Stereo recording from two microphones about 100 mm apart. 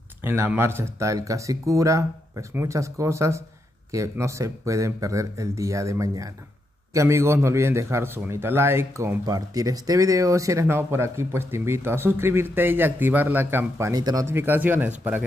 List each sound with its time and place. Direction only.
0.2 s speech: 25° right (ahead or behind)
9.2 s speech: 40° right (ahead or behind); by 15.2 s 15° right (ahead or behind)